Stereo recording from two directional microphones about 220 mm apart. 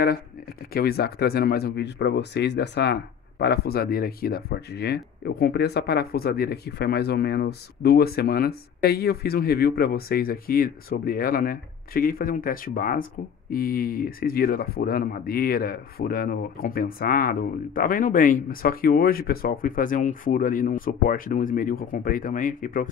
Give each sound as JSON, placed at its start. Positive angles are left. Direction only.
{"t": 0.7, "sound": "speech", "side_deg": 45}